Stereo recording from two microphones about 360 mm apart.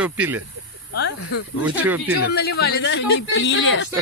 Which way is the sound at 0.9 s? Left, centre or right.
Left.